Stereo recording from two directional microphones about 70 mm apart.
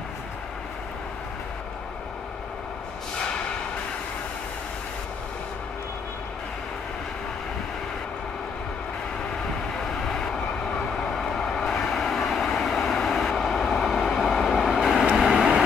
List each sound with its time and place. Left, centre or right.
10.0 s vehicle: centre